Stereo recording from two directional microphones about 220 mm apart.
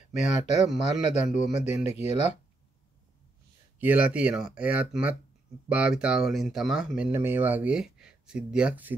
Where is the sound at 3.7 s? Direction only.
5° right (ahead or behind).